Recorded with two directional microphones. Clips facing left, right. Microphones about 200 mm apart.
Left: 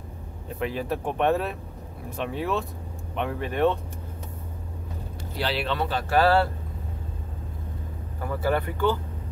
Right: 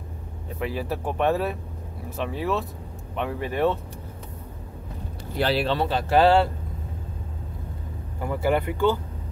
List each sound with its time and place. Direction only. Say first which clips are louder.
0.6 s speech: even; 5° right (ahead or behind)
5.4 s speech: right 4 dB; 40° right (ahead or behind); by 6.5 s 15° right (ahead or behind)
8.2 s speech: right 2 dB; 15° right (ahead or behind)